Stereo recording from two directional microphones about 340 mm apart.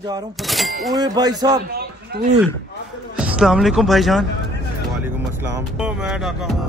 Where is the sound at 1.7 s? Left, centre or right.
Right.